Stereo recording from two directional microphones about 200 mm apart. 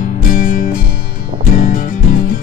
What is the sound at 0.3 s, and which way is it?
Music, 45° left (ahead or behind).